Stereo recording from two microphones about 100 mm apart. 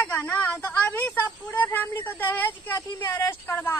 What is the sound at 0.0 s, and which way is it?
Speech, 15° left (ahead or behind).